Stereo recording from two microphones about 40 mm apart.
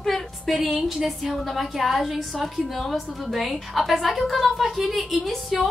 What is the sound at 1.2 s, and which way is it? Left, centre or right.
A woman's voice, centre.